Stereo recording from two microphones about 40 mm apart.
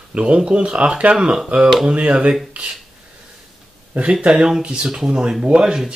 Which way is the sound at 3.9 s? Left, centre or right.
Right.